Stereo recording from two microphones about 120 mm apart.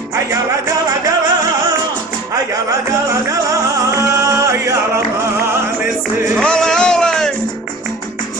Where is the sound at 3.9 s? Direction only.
25° right (ahead or behind).